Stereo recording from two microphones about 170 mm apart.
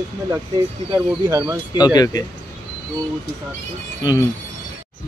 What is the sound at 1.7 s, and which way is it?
Speech, 25° left (ahead or behind).